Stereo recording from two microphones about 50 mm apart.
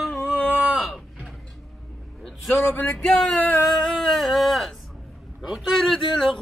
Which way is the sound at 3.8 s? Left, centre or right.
Centre.